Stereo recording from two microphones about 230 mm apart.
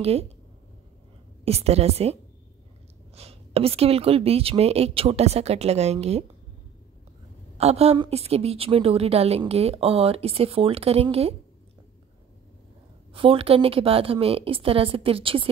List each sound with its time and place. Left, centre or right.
1.4 s a woman's voice: right
3.2 s a woman's voice: right
7.5 s a woman's voice: right
13.1 s a woman's voice: right